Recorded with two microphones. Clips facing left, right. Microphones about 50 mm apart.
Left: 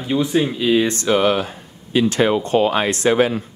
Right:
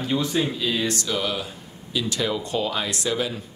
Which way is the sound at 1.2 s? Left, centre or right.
Left.